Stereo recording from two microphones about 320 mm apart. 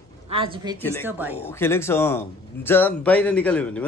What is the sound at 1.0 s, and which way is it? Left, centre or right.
Speech, centre.